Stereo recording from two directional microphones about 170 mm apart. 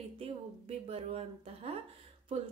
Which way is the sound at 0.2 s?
35° right (ahead or behind).